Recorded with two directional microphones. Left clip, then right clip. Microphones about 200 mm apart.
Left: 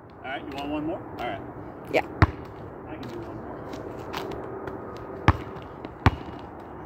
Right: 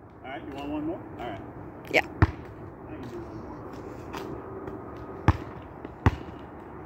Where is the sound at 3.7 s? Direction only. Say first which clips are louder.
Left 4 dB; 15° left (ahead or behind).